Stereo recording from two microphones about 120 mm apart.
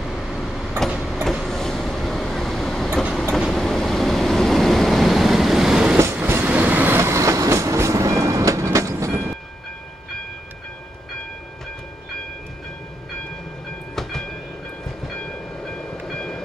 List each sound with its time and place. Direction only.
0.0 s vehicle: centre (ahead or behind)
6.2 s train: 20° right (ahead or behind)
13.9 s train: 5° left (ahead or behind)